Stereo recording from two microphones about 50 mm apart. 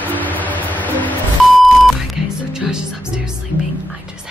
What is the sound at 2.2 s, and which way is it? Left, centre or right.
Music, centre.